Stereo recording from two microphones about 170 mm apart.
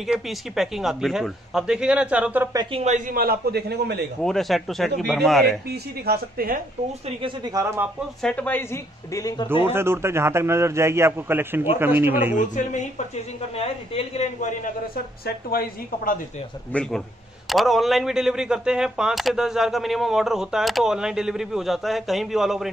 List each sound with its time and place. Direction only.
0.0 s speech: centre (ahead or behind)
2.5 s speech: 25° right (ahead or behind)
2.8 s a man's voice: 40° right (ahead or behind)
3.2 s a man's voice: 65° right (ahead or behind)
4.2 s speech: centre (ahead or behind)
6.0 s a woman's voice: 60° right (ahead or behind)
7.2 s speech: 25° right (ahead or behind)
8.2 s speech: 5° left (ahead or behind)
9.5 s a man's voice: 15° right (ahead or behind)
12.4 s a woman's voice: 45° left (ahead or behind)
15.2 s a woman's voice: 60° left (ahead or behind)
16.7 s speech: 10° left (ahead or behind)